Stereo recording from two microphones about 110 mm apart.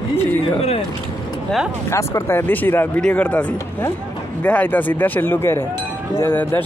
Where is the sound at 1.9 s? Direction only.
25° left (ahead or behind).